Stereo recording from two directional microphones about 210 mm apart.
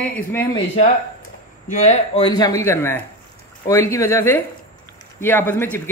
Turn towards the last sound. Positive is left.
turn(degrees=10)  # may be behind; listen again after turning